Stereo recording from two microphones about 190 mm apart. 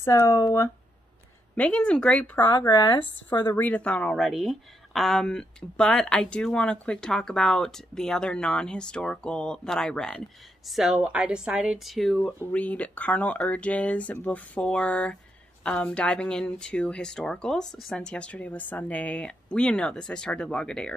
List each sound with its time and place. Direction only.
0.0 s speech: 15° left (ahead or behind)
2.4 s speech: 25° left (ahead or behind)
3.5 s speech: 10° left (ahead or behind)